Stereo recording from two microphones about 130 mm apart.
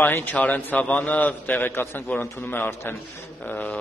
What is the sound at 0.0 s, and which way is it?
A man's voice, 15° left (ahead or behind).